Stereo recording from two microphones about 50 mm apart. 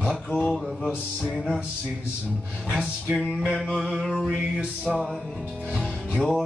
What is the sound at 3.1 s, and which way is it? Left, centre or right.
Music, centre.